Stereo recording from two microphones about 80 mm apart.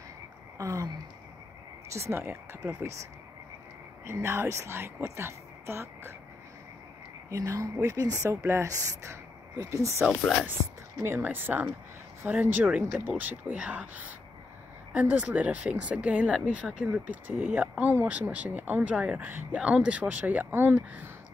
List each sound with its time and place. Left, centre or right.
0.6 s a sound: right
1.9 s speech: right
4.0 s speech: right
7.2 s speech: right